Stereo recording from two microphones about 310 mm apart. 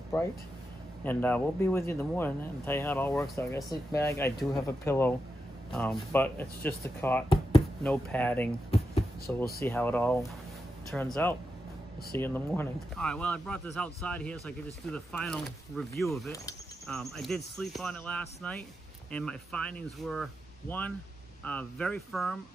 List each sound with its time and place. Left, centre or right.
1.0 s speech: centre
8.6 s a sound: centre
9.3 s speech: centre